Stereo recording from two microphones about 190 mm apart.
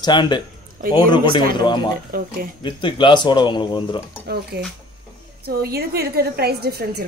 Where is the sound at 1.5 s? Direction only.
25° left (ahead or behind).